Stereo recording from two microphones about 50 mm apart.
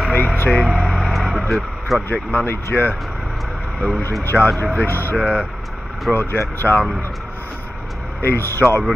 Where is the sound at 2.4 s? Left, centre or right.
Left.